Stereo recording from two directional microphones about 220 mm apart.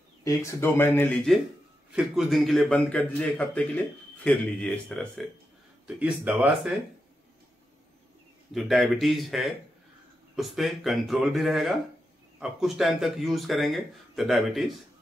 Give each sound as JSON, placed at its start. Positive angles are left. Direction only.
{"t": 0.2, "sound": "a man's voice", "side_deg": 15}
{"t": 8.5, "sound": "a man's voice", "side_deg": 0}